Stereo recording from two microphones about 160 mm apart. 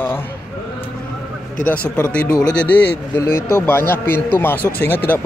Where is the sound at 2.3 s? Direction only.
5° left (ahead or behind).